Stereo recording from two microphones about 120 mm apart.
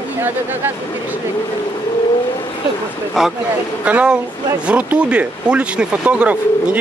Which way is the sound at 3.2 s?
Centre (ahead or behind).